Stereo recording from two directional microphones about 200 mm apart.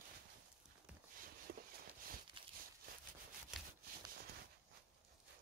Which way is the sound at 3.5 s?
Centre (ahead or behind).